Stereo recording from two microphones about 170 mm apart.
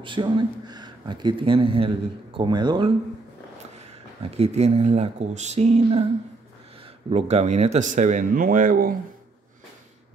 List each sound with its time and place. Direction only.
0.0 s speech: 30° right (ahead or behind)
4.2 s speech: 35° right (ahead or behind)
7.1 s speech: 40° right (ahead or behind); by 8.9 s 55° right (ahead or behind)